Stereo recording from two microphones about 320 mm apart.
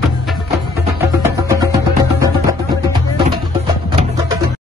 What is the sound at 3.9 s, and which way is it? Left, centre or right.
Music, centre.